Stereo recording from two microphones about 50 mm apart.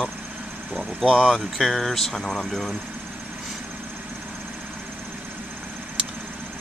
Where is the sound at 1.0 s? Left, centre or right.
Centre.